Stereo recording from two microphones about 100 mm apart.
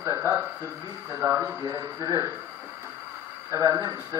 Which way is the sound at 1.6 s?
40° right (ahead or behind).